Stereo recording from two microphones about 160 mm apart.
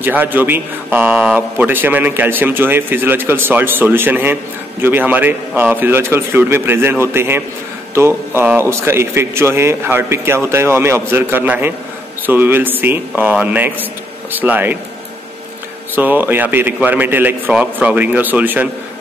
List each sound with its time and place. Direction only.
0.0 s a man's voice: 10° right (ahead or behind)
15.9 s a man's voice: 10° right (ahead or behind)